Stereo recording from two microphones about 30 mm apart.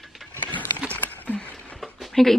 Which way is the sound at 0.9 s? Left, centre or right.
Left.